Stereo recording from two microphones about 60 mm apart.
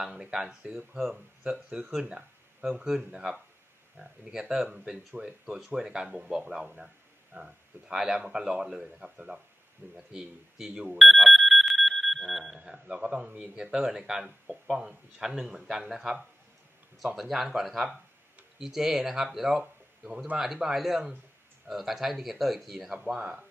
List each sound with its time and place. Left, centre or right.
0.0 s a man's voice: centre
1.4 s a man's voice: centre
5.2 s speech: right
5.8 s a man's voice: centre
11.0 s alarm: centre
12.5 s a man's voice: centre
13.7 s a man's voice: centre
19.5 s a sound: centre
20.3 s a man's voice: centre
22.8 s a man's voice: centre